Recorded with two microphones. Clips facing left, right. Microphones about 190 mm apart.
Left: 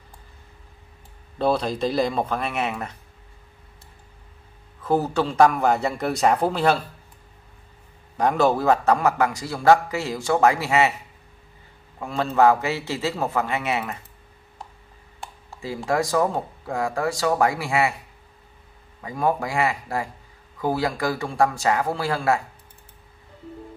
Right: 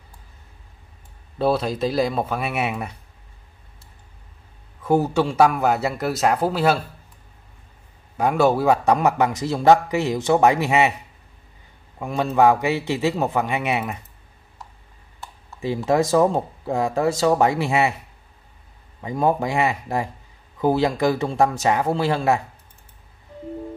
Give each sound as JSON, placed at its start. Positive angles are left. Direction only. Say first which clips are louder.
{"t": 1.4, "sound": "a man's voice", "louder": "right 1 dB", "side_deg": -5}
{"t": 4.8, "sound": "a man's voice", "louder": "right 3 dB", "side_deg": -10}
{"t": 8.2, "sound": "a man's voice", "louder": "right 2 dB", "side_deg": -10}
{"t": 12.0, "sound": "a man's voice", "louder": "right 1 dB", "side_deg": -15}
{"t": 15.6, "sound": "a man's voice", "louder": "right 4 dB", "side_deg": -20}
{"t": 18.9, "sound": "a man's voice", "louder": "right 3 dB", "side_deg": -25}